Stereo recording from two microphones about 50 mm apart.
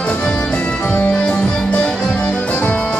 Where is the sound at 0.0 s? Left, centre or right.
Left.